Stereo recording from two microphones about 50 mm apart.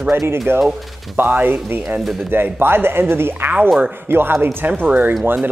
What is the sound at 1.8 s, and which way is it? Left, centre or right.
Speech, centre.